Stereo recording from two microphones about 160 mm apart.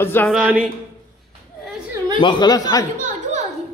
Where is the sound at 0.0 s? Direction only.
15° left (ahead or behind).